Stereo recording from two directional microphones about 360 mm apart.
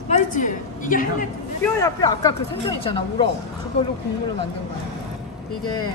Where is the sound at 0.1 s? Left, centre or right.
Left.